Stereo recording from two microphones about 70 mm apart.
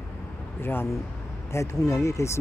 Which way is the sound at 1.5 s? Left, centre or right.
Left.